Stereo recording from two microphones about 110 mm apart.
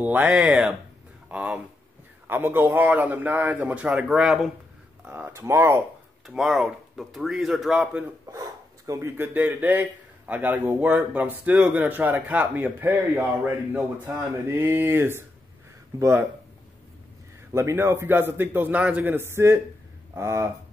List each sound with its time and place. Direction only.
0.0 s a man's voice: 15° right (ahead or behind)
5.0 s a man's voice: 15° right (ahead or behind)
6.2 s speech: centre (ahead or behind)
8.3 s dog: 30° right (ahead or behind)
9.1 s a man's voice: 15° right (ahead or behind)
14.5 s a man's voice: 20° right (ahead or behind)
17.5 s a man's voice: 25° right (ahead or behind)